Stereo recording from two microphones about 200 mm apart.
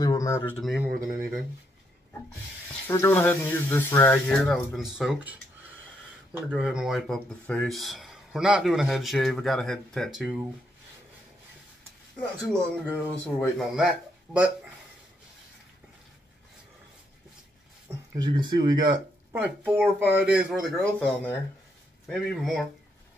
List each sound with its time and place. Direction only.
0.0 s speech: 20° left (ahead or behind)
0.6 s speech: centre (ahead or behind)
2.9 s speech: 10° left (ahead or behind)
6.3 s speech: 5° right (ahead or behind)
12.2 s speech: 10° left (ahead or behind)
13.7 s speech: 5° right (ahead or behind)
17.8 s speech: 20° right (ahead or behind)
19.4 s speech: 10° right (ahead or behind)